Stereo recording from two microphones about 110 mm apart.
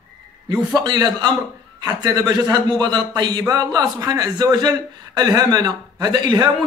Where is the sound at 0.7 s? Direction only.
35° right (ahead or behind).